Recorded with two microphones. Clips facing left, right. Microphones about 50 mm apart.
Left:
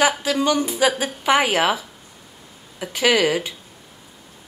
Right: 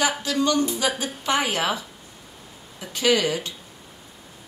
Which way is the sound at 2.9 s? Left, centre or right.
Centre.